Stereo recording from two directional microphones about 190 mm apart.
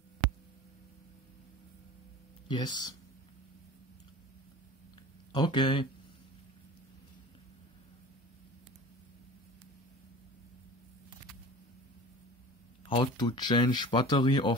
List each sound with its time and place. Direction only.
2.4 s speech: 25° left (ahead or behind)
5.3 s speech: 25° left (ahead or behind)
12.8 s speech: 25° left (ahead or behind)